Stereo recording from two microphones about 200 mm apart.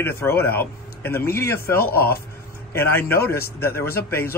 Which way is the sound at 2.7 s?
10° left (ahead or behind).